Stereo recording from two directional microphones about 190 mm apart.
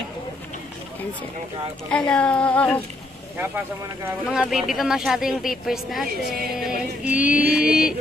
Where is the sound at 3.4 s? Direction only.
10° right (ahead or behind).